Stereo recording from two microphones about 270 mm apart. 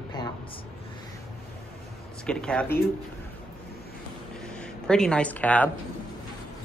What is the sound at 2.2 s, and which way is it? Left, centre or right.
Speech, centre.